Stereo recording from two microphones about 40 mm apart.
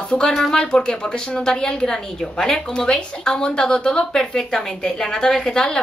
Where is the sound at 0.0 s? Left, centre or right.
Left.